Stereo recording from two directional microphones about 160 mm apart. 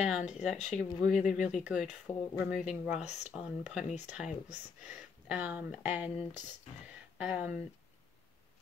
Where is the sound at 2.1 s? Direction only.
40° left (ahead or behind).